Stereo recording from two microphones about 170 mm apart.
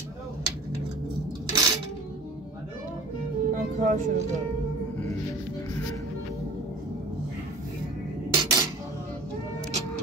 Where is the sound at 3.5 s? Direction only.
50° right (ahead or behind).